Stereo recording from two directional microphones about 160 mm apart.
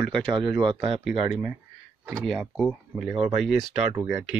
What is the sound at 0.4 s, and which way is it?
Speech, 30° right (ahead or behind).